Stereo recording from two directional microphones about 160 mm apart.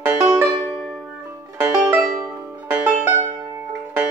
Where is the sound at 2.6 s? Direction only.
10° right (ahead or behind).